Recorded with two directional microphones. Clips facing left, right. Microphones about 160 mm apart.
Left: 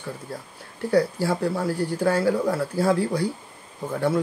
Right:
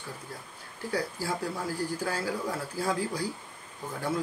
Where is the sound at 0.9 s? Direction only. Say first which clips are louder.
Left 10 dB; 70° left (ahead or behind).